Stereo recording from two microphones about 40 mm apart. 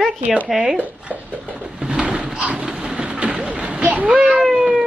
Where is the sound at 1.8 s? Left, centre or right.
Right.